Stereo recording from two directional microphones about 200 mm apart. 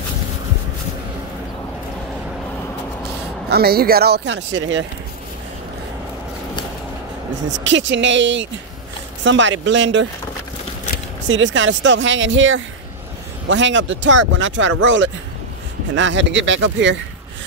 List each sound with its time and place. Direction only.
3.4 s speech: 50° right (ahead or behind); by 4.8 s 70° right (ahead or behind)
7.5 s speech: 65° right (ahead or behind)
11.2 s speech: 70° right (ahead or behind)
15.9 s speech: 65° right (ahead or behind)